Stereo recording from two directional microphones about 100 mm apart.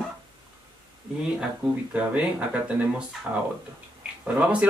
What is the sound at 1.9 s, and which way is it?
Speech, 15° right (ahead or behind).